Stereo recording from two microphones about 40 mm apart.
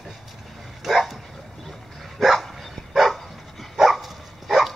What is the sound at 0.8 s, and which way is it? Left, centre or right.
Dog, centre.